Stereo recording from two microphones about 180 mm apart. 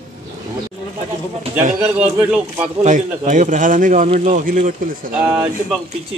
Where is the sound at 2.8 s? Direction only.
45° right (ahead or behind).